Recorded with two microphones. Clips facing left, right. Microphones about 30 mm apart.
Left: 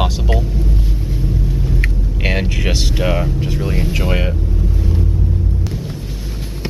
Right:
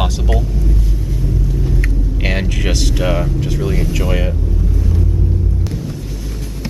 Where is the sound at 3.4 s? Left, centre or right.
Centre.